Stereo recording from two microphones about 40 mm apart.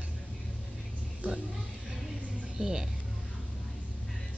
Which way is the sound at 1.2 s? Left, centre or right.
Right.